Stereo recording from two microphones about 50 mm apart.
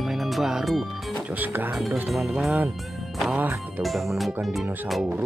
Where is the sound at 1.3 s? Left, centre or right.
Right.